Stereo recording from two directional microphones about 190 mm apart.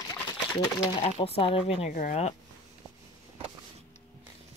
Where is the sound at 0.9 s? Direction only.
30° left (ahead or behind).